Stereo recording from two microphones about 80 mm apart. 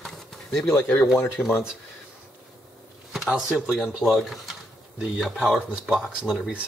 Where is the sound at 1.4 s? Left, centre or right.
Left.